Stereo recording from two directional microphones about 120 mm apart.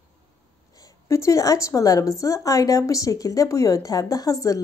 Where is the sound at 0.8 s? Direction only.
25° left (ahead or behind).